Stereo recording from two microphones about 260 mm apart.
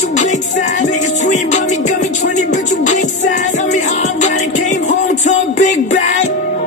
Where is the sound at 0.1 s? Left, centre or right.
Left.